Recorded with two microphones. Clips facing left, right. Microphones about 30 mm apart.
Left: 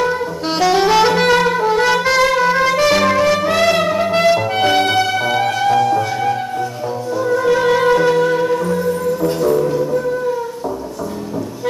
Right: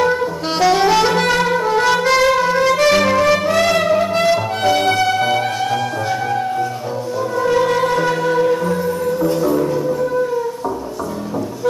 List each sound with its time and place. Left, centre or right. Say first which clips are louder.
0.0 s saxophone: right 1 dB; centre
2.4 s music: even; centre
4.6 s music: left 2 dB; left
4.8 s music: right 1 dB; centre
7.2 s music: left 2 dB; centre